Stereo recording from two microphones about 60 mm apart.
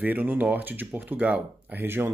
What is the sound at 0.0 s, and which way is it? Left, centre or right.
Speech, right.